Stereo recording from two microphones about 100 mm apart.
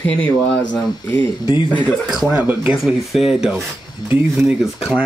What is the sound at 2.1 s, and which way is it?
Speech, 5° right (ahead or behind).